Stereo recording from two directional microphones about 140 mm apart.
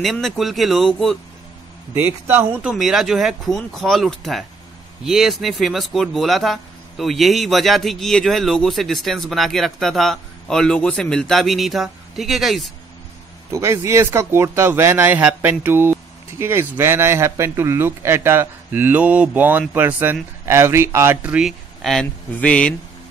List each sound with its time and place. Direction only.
0.0 s speech: centre (ahead or behind)
2.0 s speech: 15° right (ahead or behind)
2.8 s speech: centre (ahead or behind)
13.5 s speech: 20° right (ahead or behind); by 22.8 s 10° left (ahead or behind)